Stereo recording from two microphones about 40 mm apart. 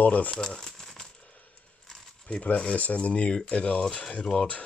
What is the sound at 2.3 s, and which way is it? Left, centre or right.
Speech, left.